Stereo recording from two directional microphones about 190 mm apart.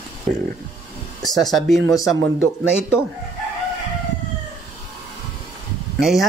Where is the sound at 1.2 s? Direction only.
Centre (ahead or behind).